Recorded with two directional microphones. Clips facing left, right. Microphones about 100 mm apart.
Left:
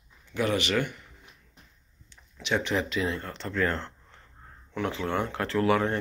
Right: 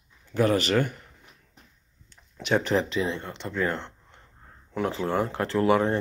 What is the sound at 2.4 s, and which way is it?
Speech, 45° right (ahead or behind).